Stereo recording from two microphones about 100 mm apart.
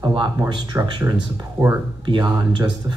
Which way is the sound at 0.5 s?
45° right (ahead or behind).